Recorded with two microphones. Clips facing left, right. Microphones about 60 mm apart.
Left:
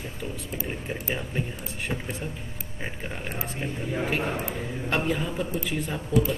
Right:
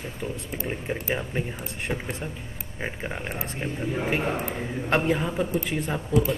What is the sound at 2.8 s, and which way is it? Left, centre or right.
Speech, centre.